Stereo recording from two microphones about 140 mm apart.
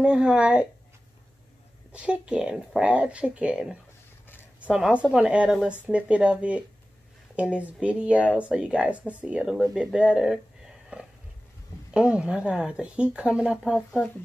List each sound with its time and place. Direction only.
0.0 s a woman's voice: 5° right (ahead or behind)
1.9 s a woman's voice: 10° right (ahead or behind)
11.9 s a woman's voice: 10° right (ahead or behind)
13.7 s a woman's voice: 5° left (ahead or behind)